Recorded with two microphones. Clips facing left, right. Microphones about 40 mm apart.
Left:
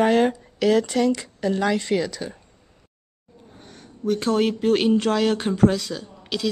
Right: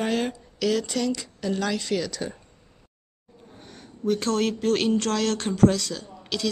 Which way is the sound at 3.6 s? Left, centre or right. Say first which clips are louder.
Left 1 dB; centre.